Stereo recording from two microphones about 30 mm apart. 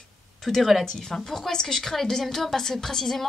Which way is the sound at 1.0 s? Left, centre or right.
Centre.